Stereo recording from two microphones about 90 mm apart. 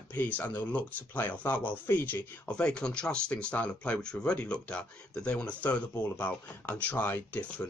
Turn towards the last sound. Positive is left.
turn(degrees=20)  # may be behind; listen again after turning